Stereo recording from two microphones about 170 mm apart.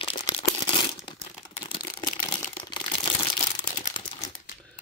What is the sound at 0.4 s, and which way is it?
Crumpling, 30° left (ahead or behind).